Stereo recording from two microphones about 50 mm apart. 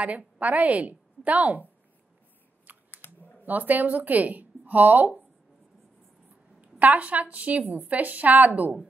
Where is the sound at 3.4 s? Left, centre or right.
Right.